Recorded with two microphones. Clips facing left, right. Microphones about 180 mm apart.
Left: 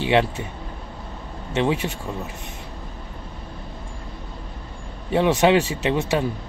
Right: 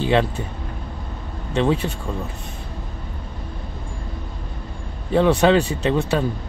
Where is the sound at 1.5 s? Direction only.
15° left (ahead or behind).